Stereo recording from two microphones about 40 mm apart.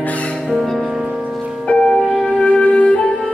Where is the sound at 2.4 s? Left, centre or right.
Left.